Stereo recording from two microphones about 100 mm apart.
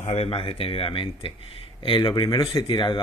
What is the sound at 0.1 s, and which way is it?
Speech, 80° left.